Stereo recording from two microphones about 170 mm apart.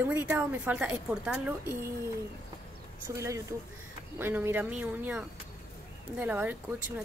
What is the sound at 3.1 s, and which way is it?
Speech, 15° right (ahead or behind).